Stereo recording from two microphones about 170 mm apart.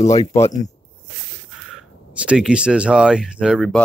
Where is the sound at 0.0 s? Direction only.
20° left (ahead or behind).